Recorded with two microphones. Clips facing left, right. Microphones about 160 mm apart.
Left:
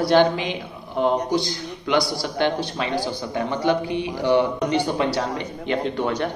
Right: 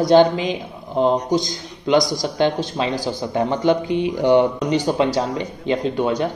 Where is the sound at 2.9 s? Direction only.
45° right (ahead or behind).